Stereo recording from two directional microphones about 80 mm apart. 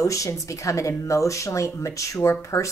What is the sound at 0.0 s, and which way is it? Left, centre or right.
Speech, left.